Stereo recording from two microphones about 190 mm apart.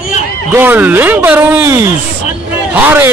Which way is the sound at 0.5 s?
10° right (ahead or behind).